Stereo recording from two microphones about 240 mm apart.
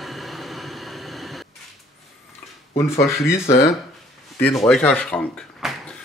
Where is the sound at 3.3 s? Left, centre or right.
Centre.